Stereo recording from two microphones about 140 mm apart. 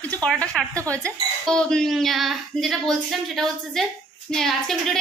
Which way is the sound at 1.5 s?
5° left (ahead or behind).